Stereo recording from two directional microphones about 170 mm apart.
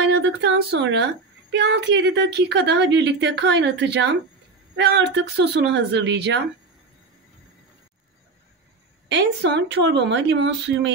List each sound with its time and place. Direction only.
0.1 s a sound: 90° right
1.5 s a woman's voice: 90° right
9.1 s a woman's voice: 90° right